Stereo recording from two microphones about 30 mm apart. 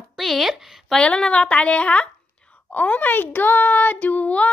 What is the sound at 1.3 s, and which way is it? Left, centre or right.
Speech, left.